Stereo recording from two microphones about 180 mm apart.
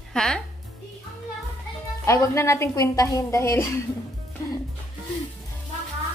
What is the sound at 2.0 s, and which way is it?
A woman's voice, 15° left (ahead or behind).